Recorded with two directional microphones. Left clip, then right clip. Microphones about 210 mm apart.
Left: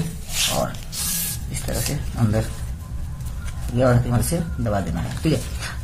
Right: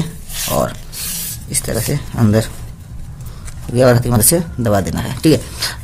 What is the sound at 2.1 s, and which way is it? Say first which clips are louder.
Speech: right 10 dB; 55° right (ahead or behind).